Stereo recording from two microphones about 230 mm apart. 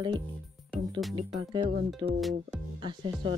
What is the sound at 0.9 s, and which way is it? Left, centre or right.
Speech, centre.